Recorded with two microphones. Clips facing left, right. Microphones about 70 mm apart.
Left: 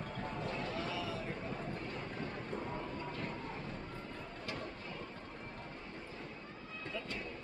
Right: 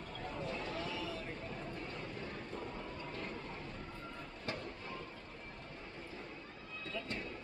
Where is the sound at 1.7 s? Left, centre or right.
Left.